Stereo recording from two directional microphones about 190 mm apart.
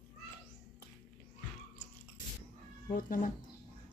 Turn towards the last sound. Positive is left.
turn(degrees=45)  # may be behind; listen again after turning